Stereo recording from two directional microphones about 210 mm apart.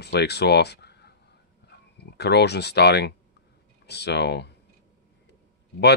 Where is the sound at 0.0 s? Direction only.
50° left (ahead or behind).